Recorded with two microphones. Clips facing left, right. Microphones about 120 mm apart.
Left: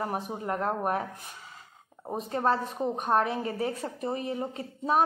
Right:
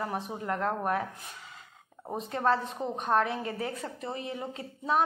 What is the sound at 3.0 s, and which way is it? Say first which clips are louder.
A woman's voice: even; 40° left (ahead or behind).